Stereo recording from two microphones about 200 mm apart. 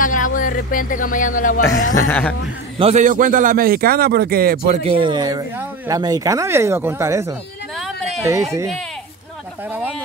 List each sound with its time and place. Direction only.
0.0 s speech: 40° left (ahead or behind)
2.0 s speech: 10° left (ahead or behind)
2.8 s a man's voice: 35° right (ahead or behind)
4.8 s speech: 25° right (ahead or behind)
9.7 s speech: 10° right (ahead or behind)